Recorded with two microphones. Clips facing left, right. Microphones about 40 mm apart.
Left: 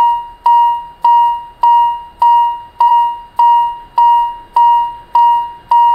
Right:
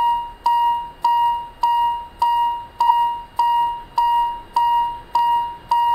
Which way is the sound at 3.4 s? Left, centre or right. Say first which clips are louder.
Left 9 dB; centre.